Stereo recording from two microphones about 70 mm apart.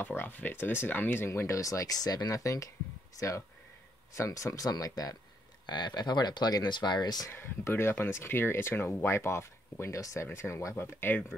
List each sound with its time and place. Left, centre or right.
0.0 s speech: left
5.7 s speech: left
7.2 s speech: left
10.2 s speech: left
10.8 s speech: left